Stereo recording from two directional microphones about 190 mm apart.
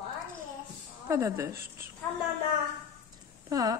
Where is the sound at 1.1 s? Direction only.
15° right (ahead or behind).